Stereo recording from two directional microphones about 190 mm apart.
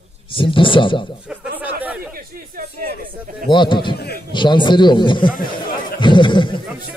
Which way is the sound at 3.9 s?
55° left (ahead or behind).